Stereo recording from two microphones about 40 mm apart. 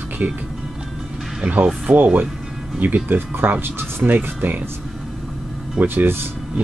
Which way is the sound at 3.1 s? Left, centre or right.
Right.